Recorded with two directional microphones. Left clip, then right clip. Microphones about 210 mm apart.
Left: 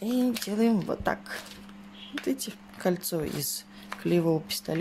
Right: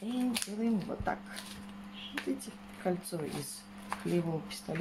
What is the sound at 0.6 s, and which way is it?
Speech, 50° left (ahead or behind).